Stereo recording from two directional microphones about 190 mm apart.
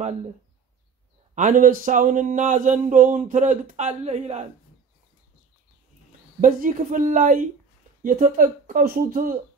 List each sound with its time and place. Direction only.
1.3 s speech: 45° right (ahead or behind)
6.4 s speech: 45° right (ahead or behind)